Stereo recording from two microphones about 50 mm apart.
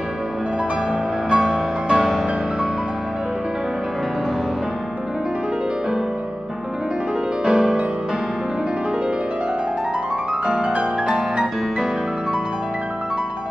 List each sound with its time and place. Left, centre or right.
1.3 s music: centre
2.0 s music: centre
7.4 s music: centre
10.4 s music: centre